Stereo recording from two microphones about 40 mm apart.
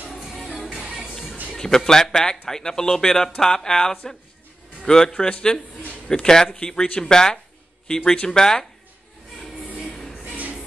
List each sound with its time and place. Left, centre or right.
0.1 s music: centre
1.5 s speech: centre
10.2 s train: right